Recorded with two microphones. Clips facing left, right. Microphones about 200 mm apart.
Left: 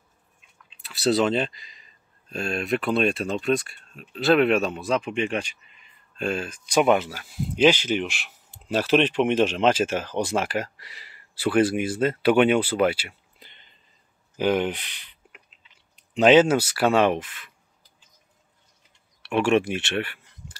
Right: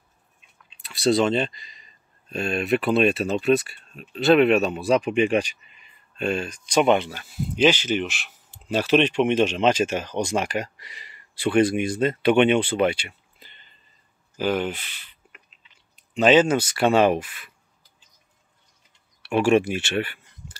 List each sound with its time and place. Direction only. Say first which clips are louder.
0.7 s speech: right 1 dB; centre (ahead or behind)
4.8 s speech: right 5 dB; 15° right (ahead or behind)
6.1 s speech: right 2 dB; centre (ahead or behind)
14.3 s a sound: left 2 dB; 20° left (ahead or behind)
16.2 s speech: left 1 dB; 10° left (ahead or behind); by 17.5 s 10° right (ahead or behind)
19.2 s speech: right 2 dB; 5° right (ahead or behind)